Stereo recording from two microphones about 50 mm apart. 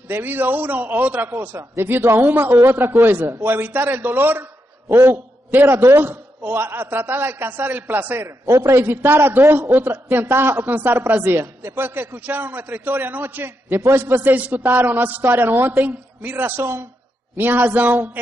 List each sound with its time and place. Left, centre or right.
0.1 s a woman's voice: right
1.3 s a man's voice: right
8.5 s a man's voice: right
14.3 s a woman's voice: right